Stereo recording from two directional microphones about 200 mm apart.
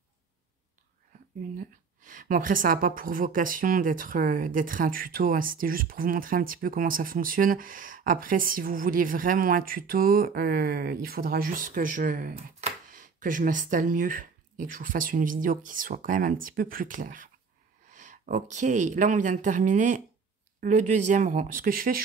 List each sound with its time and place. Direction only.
1.6 s a woman's voice: 45° right (ahead or behind)